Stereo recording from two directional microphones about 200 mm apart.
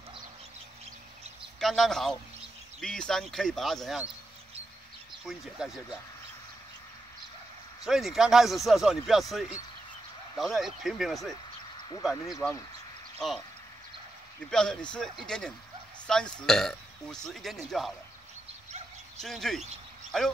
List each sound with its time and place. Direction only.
1.6 s a man's voice: centre (ahead or behind)
5.2 s a man's voice: centre (ahead or behind)
7.8 s a man's voice: centre (ahead or behind)
12.2 s speech: 20° left (ahead or behind)
13.2 s a man's voice: centre (ahead or behind)
14.4 s a man's voice: 5° left (ahead or behind)
19.2 s a man's voice: centre (ahead or behind)